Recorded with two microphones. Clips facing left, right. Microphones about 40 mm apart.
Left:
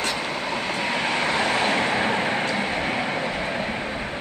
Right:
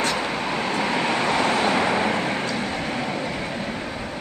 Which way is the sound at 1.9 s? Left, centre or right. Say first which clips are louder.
Even; centre.